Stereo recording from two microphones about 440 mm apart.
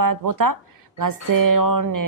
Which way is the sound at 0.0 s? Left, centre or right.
Right.